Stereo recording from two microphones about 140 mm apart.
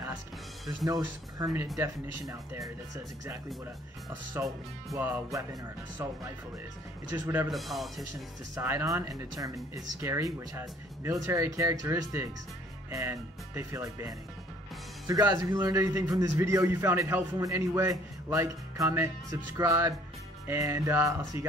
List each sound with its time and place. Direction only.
0.8 s a man's voice: 25° right (ahead or behind)
4.9 s a man's voice: 20° right (ahead or behind)
7.1 s speech: 15° right (ahead or behind)
7.4 s speech: centre (ahead or behind)
8.5 s a man's voice: 15° right (ahead or behind)
15.2 s a man's voice: 20° right (ahead or behind)